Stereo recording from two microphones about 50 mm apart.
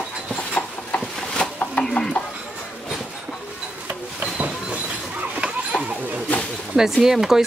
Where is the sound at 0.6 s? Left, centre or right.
Left.